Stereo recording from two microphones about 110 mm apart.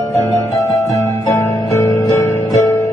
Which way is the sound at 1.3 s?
25° left (ahead or behind).